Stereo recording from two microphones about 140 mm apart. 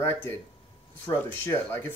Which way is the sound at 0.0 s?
15° left (ahead or behind).